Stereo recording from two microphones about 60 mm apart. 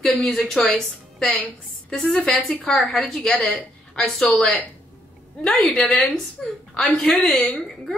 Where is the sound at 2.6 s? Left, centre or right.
Centre.